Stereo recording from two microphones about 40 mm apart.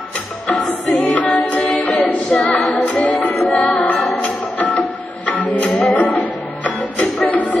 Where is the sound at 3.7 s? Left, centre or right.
Left.